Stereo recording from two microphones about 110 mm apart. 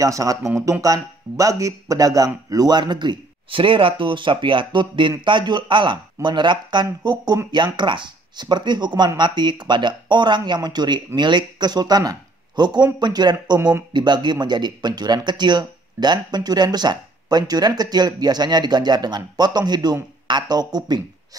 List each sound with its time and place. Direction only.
0.0 s speech: 30° right (ahead or behind)